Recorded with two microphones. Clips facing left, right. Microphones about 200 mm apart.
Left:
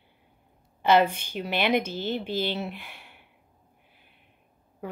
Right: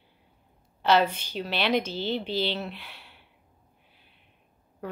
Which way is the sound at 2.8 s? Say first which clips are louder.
Left 1 dB; 15° left (ahead or behind).